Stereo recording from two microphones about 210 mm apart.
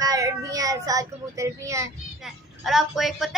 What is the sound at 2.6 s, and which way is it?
Speech, centre (ahead or behind).